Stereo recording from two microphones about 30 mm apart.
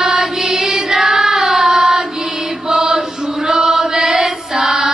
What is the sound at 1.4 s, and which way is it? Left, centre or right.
Singing, centre.